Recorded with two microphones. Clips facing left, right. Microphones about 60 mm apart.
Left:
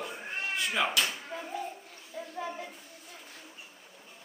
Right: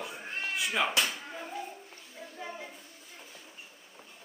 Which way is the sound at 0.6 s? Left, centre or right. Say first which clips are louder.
Even; centre.